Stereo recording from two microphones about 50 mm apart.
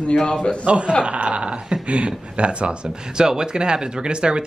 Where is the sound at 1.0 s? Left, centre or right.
Right.